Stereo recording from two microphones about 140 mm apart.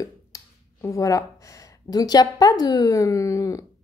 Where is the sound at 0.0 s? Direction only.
20° left (ahead or behind).